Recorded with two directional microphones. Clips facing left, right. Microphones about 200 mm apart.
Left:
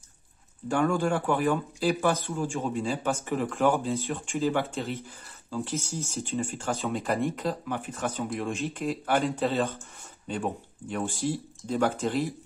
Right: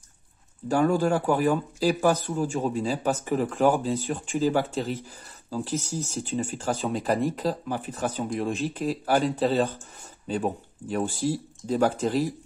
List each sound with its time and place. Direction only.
0.7 s speech: 35° right (ahead or behind)